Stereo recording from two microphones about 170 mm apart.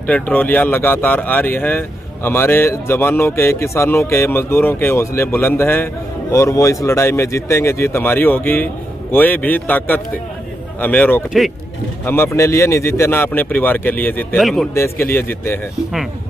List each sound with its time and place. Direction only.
0.0 s speech: 10° left (ahead or behind)
14.4 s a man's voice: centre (ahead or behind)
15.1 s speech: 10° left (ahead or behind)